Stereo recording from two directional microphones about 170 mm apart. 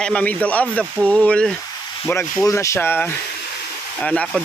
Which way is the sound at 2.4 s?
15° left (ahead or behind).